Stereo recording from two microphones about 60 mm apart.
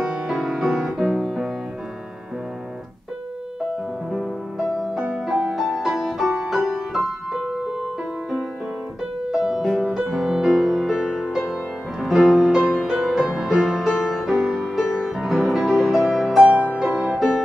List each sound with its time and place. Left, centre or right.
0.0 s music: centre
4.1 s music: centre
9.3 s music: centre
9.6 s music: centre
16.4 s music: centre